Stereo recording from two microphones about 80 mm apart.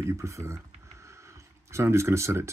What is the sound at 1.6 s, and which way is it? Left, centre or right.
Speech, right.